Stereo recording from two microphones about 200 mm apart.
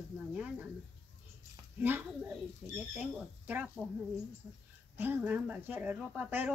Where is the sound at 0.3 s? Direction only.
5° right (ahead or behind).